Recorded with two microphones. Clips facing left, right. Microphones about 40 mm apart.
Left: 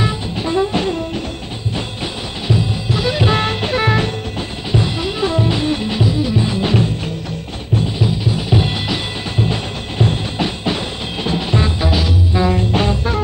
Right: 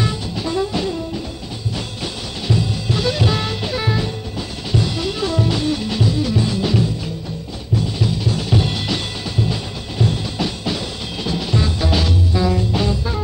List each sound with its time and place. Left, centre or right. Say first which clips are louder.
0.4 s music: left 4 dB; left
2.4 s music: left 2 dB; centre
3.3 s music: left 4 dB; left
4.7 s music: left 2 dB; left
6.6 s music: left 3 dB; left
8.0 s music: left 2 dB; centre
9.4 s music: left 3 dB; left